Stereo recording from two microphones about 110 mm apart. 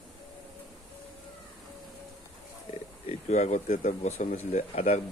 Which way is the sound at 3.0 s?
80° left.